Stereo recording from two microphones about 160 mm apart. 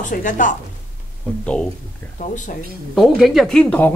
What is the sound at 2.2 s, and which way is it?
Speech, 50° left (ahead or behind).